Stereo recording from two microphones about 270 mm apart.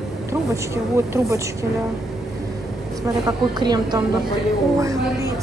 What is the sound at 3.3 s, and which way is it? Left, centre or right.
Speech, centre.